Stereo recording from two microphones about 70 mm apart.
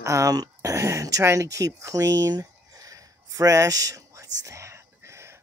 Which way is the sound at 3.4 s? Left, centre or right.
Right.